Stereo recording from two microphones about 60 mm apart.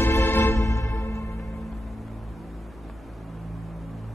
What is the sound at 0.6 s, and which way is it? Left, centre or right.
Music, left.